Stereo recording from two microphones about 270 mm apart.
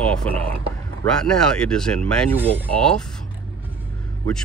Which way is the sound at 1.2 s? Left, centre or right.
Centre.